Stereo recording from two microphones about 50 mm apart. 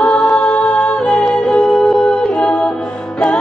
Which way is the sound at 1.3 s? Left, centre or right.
Centre.